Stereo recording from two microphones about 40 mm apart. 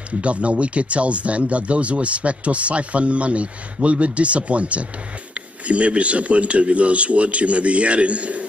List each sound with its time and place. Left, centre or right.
0.2 s speech: right